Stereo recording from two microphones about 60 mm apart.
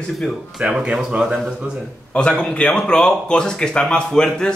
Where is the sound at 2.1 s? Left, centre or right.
Centre.